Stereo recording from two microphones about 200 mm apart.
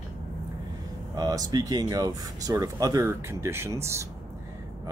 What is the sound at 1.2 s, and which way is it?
Speech, 20° right (ahead or behind).